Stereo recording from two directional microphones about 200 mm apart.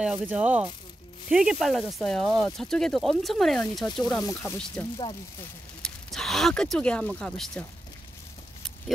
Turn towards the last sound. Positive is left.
turn(degrees=5)  # may be behind; listen again after turning